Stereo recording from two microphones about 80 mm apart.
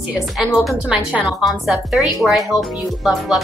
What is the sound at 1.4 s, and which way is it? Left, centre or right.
Speech, centre.